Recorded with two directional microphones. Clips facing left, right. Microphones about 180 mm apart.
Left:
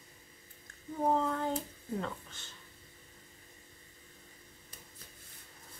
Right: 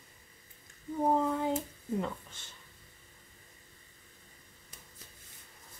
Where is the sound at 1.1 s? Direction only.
10° right (ahead or behind).